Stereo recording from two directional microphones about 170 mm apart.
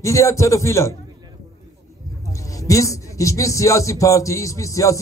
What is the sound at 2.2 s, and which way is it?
A man's voice, 20° left (ahead or behind).